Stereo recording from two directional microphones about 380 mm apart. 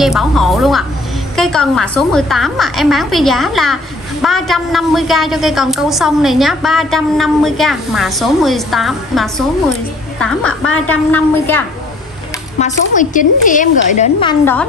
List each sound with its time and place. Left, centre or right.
0.0 s a woman's voice: centre
12.5 s a woman's voice: centre
14.4 s a woman's voice: centre